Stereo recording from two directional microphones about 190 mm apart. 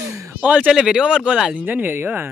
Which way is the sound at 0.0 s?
15° right (ahead or behind).